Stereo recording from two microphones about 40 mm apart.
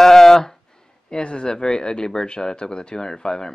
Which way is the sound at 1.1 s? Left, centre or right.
Left.